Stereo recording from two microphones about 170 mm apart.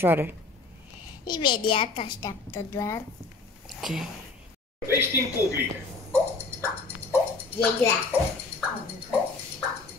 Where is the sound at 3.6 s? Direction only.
Centre (ahead or behind).